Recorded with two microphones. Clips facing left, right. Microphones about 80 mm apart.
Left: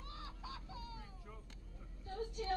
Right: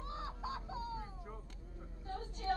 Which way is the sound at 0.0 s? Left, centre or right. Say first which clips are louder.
Right 8 dB; right.